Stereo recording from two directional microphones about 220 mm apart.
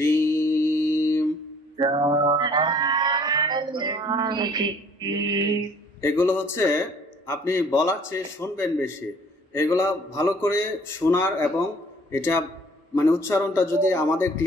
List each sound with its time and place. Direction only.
0.0 s mantra: 10° left (ahead or behind)
1.8 s music: 20° right (ahead or behind)
5.9 s a man's voice: 10° left (ahead or behind)